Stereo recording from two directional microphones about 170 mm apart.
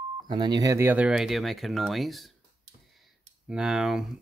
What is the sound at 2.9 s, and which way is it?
Clicking, centre (ahead or behind).